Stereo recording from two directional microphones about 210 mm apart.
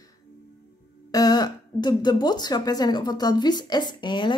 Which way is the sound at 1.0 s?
15° left (ahead or behind).